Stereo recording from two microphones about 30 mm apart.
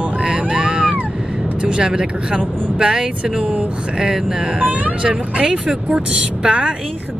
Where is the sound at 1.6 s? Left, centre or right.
Right.